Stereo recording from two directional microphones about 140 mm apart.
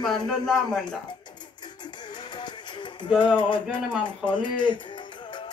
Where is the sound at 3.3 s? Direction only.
35° left (ahead or behind).